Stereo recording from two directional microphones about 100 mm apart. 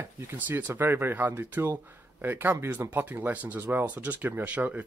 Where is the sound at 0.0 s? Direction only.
20° right (ahead or behind).